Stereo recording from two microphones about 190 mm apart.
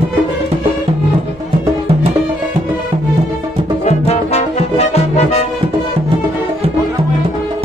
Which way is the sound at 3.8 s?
35° left (ahead or behind).